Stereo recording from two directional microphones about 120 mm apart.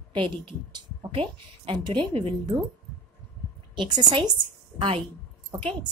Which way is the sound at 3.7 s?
40° right (ahead or behind).